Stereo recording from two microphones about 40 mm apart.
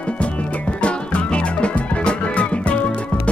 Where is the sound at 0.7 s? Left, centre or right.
Left.